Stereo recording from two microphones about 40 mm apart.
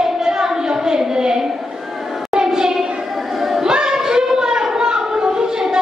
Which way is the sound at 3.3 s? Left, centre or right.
Centre.